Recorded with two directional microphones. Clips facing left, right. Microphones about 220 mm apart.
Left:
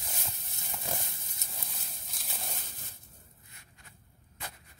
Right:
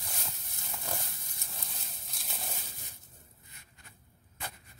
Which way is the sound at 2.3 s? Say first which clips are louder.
Even; centre (ahead or behind).